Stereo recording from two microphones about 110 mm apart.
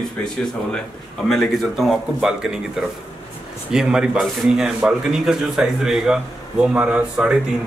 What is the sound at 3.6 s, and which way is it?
A man's voice, 5° right (ahead or behind).